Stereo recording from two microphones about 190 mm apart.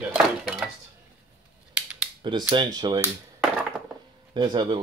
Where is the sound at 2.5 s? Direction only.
20° right (ahead or behind).